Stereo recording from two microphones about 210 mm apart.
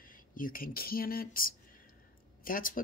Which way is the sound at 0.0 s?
40° left (ahead or behind).